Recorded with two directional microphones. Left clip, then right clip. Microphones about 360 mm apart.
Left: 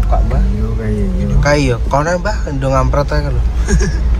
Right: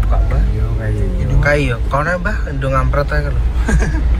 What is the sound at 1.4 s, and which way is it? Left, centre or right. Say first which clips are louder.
Speech: left 2 dB; centre.